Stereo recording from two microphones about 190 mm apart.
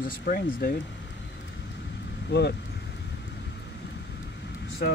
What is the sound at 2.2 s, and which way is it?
Speech, 60° left (ahead or behind).